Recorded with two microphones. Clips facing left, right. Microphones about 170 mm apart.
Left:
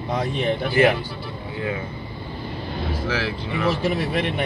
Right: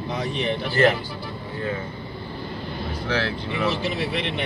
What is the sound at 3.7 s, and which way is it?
Speech, 50° left (ahead or behind).